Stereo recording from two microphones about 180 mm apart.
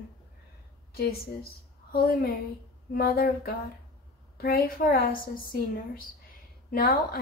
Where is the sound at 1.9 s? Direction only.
55° left (ahead or behind).